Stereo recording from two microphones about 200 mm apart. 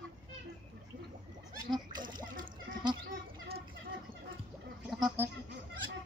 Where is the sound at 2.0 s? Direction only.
20° right (ahead or behind).